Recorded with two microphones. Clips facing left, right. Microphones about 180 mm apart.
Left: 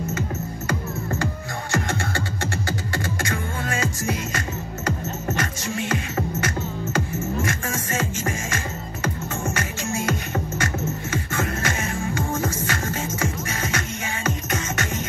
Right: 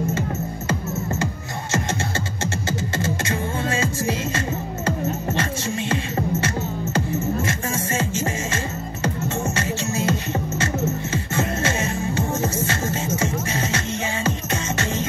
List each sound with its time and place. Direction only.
1.2 s music: 20° right (ahead or behind)
3.0 s beatboxing: 25° right (ahead or behind)
4.8 s music: 25° right (ahead or behind)
7.4 s music: 25° right (ahead or behind)
9.6 s music: 25° right (ahead or behind)